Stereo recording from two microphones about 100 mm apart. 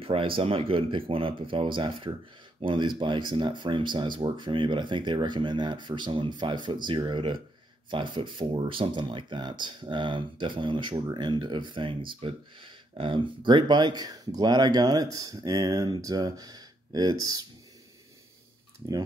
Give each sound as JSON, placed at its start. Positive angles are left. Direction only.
{"t": 0.0, "sound": "speech", "side_deg": -65}